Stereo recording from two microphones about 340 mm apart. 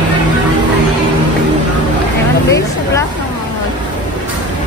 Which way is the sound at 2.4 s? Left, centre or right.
Centre.